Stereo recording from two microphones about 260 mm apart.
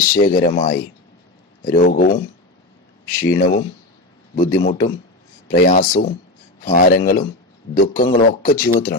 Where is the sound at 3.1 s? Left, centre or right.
Left.